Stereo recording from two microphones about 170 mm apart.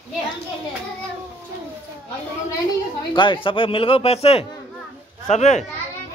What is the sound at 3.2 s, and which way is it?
Speech, 30° left (ahead or behind).